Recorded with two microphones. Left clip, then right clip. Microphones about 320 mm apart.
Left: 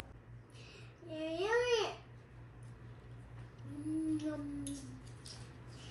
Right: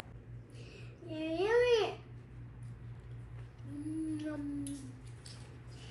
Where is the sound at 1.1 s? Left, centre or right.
Right.